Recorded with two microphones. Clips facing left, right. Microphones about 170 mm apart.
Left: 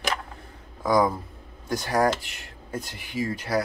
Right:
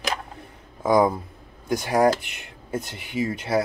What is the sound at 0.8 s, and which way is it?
Speech, 20° right (ahead or behind).